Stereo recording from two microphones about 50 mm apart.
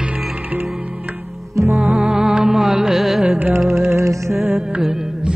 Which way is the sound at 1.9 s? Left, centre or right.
Centre.